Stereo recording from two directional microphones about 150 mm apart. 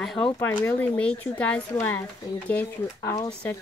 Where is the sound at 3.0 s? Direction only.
20° left (ahead or behind).